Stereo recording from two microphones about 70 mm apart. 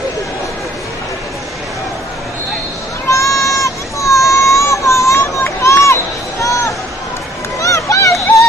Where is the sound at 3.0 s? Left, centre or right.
Left.